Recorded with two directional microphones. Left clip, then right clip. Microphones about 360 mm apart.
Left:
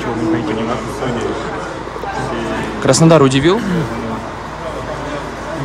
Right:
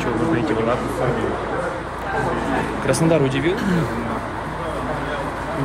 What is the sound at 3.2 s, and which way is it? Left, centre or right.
Speech, left.